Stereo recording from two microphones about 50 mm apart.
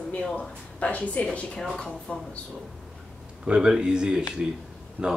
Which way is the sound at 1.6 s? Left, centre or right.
Centre.